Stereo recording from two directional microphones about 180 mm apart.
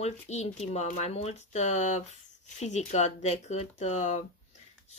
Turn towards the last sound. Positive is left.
turn(degrees=40)  # may be behind; listen again after turning